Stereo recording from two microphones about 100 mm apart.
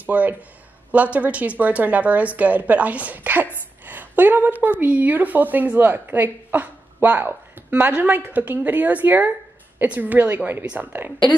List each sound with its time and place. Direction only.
0.0 s a woman's voice: 15° right (ahead or behind)